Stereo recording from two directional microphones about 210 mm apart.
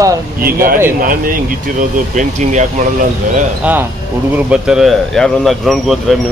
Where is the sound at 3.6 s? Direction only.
10° right (ahead or behind).